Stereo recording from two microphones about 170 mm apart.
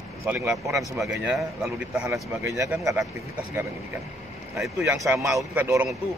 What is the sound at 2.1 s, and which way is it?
Speech, 20° right (ahead or behind).